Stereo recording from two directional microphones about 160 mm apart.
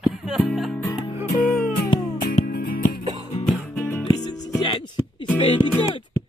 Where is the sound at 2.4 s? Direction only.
65° left (ahead or behind).